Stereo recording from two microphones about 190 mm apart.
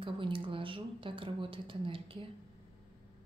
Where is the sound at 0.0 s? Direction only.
25° right (ahead or behind).